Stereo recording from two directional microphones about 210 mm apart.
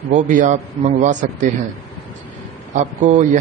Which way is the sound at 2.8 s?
35° right (ahead or behind).